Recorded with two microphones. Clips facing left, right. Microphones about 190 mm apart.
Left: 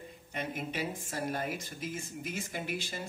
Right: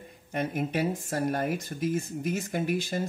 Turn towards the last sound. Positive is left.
turn(degrees=-45)  # may be behind; listen again after turning